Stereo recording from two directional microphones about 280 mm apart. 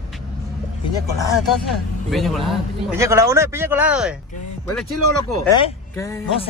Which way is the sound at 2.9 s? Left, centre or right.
Centre.